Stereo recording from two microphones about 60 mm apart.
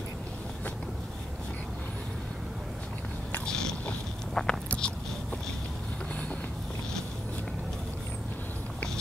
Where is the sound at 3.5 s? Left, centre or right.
Centre.